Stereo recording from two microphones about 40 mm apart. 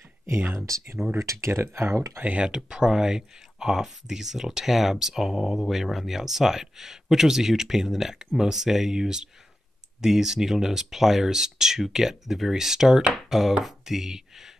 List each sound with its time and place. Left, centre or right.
1.0 s speech: centre
1.5 s speech: right
2.4 s speech: centre